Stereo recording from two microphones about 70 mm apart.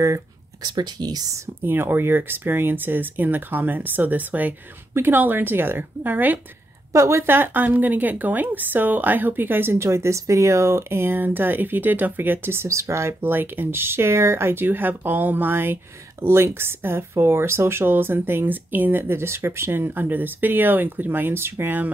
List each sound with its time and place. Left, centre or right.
0.6 s speech: right
1.7 s speech: right
6.9 s speech: right